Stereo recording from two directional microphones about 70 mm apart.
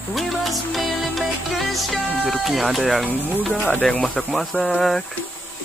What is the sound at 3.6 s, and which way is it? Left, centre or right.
Speech, centre.